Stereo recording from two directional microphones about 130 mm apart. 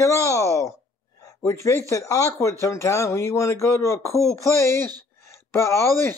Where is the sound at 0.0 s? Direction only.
25° left (ahead or behind).